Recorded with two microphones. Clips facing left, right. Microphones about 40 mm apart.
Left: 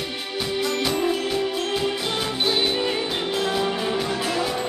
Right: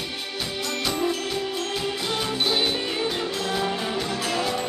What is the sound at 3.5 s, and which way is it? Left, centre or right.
Music, centre.